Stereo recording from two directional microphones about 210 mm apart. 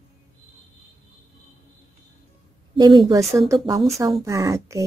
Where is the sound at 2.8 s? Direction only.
20° right (ahead or behind).